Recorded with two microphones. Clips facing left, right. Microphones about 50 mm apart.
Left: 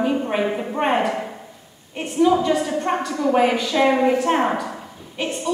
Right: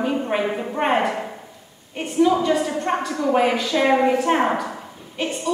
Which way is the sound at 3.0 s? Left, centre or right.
Centre.